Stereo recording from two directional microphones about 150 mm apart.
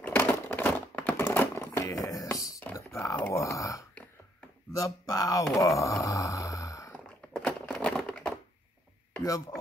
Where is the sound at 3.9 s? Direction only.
10° left (ahead or behind).